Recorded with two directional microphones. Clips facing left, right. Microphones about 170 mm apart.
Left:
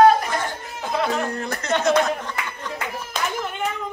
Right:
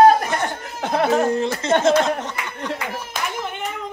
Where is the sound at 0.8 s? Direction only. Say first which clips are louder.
Right 5 dB; 60° right (ahead or behind).